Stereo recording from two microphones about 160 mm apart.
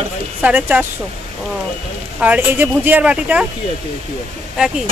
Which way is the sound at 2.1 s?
10° right (ahead or behind).